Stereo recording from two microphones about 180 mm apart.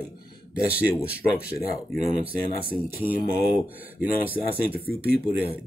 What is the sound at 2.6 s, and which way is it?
Speech, 55° left (ahead or behind).